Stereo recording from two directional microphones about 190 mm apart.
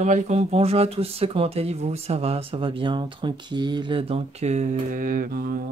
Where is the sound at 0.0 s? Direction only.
40° right (ahead or behind).